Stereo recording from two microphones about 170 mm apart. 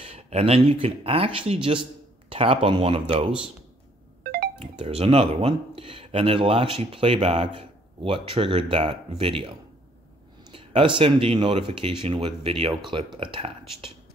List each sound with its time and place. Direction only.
0.0 s speech: 35° right (ahead or behind)
4.2 s music: 65° right (ahead or behind)
4.6 s speech: 35° right (ahead or behind)